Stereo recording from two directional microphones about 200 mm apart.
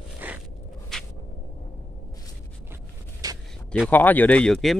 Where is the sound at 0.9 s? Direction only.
5° left (ahead or behind).